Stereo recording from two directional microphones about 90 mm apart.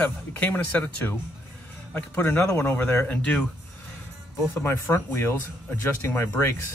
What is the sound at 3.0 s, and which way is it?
Speech, 15° left (ahead or behind).